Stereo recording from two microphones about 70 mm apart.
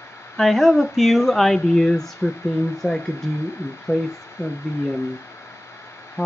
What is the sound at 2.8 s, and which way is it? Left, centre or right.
Speech, left.